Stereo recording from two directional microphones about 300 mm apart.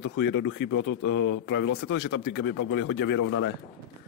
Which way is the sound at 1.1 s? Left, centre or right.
Left.